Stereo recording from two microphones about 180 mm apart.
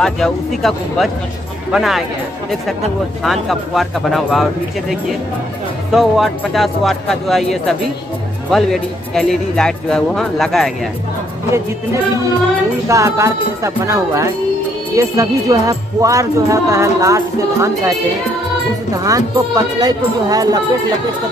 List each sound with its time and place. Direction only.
0.0 s speech: centre (ahead or behind)
3.3 s speech: centre (ahead or behind)
12.8 s music: 15° right (ahead or behind)
19.0 s speech: 20° right (ahead or behind)